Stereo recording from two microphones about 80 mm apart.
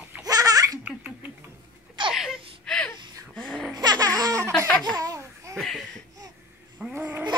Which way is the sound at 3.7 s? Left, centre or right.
Right.